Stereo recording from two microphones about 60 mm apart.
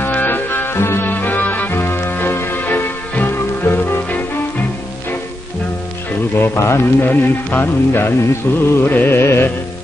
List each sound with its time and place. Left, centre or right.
0.0 s music: left
1.0 s music: left
6.3 s speech: left
7.1 s music: left
8.8 s music: left